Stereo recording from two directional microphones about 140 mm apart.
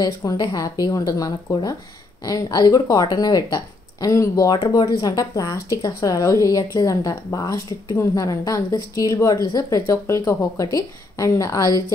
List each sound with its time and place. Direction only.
0.0 s a woman's voice: 25° left (ahead or behind)